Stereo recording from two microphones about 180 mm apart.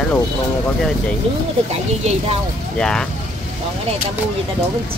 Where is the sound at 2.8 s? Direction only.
5° left (ahead or behind).